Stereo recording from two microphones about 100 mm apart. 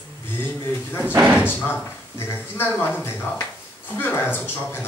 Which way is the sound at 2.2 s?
25° left (ahead or behind).